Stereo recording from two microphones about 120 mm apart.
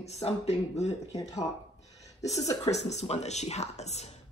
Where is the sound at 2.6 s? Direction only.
65° left (ahead or behind).